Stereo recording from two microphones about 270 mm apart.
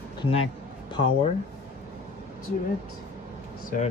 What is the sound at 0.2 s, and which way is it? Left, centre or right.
Speech, left.